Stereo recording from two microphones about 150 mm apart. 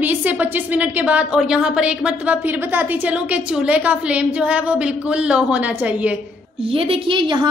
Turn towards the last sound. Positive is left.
turn(degrees=-35)  # may be behind; listen again after turning